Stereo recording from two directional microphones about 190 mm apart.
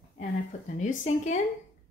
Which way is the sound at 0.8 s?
40° left (ahead or behind).